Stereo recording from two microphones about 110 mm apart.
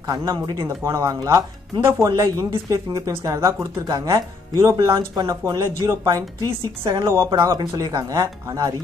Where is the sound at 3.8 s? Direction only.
40° right (ahead or behind).